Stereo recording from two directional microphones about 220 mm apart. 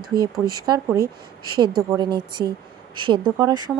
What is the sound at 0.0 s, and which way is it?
Speech, 45° right (ahead or behind).